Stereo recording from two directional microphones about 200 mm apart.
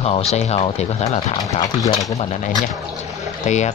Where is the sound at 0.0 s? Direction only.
30° left (ahead or behind).